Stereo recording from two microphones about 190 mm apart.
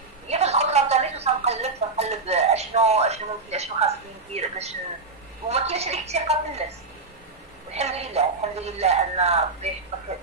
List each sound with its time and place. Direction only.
0.3 s a sound: 35° right (ahead or behind)
5.5 s speech: 35° right (ahead or behind)
7.7 s speech: 35° right (ahead or behind)